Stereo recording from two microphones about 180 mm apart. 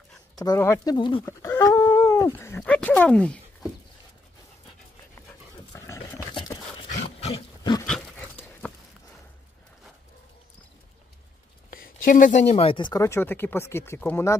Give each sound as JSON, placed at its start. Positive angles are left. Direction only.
{"t": 0.4, "sound": "speech", "side_deg": 15}
{"t": 1.2, "sound": "speech", "side_deg": 15}
{"t": 5.7, "sound": "dog", "side_deg": 15}
{"t": 6.9, "sound": "wild animals", "side_deg": 40}
{"t": 8.6, "sound": "a sound", "side_deg": 10}
{"t": 11.7, "sound": "speech", "side_deg": 50}